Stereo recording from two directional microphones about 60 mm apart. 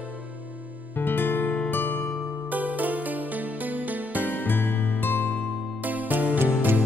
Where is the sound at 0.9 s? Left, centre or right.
Left.